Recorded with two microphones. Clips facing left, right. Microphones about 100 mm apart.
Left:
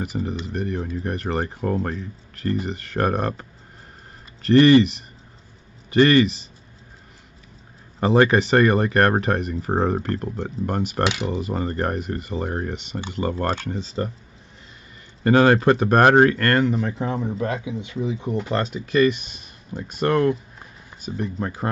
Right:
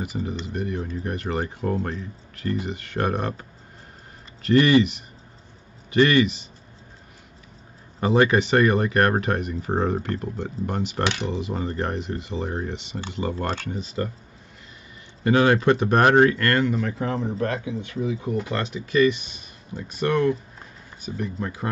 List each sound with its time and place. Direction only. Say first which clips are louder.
0.1 s speech: left 2 dB; 40° left (ahead or behind)
4.5 s speech: left 4 dB; 35° left (ahead or behind)
5.9 s speech: left 2 dB; 35° left (ahead or behind)
8.0 s speech: left 2 dB; 35° left (ahead or behind)
11.1 s speech: left 2 dB; 5° left (ahead or behind)
11.4 s speech: left 3 dB; 50° left (ahead or behind)
13.7 s speech: left 1 dB; 25° left (ahead or behind)
15.2 s speech: left 3 dB; 45° left (ahead or behind); by 18.4 s 25° left (ahead or behind)
18.5 s speech: left 3 dB; 40° left (ahead or behind)